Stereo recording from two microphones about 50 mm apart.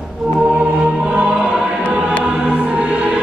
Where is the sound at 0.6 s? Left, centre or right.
Right.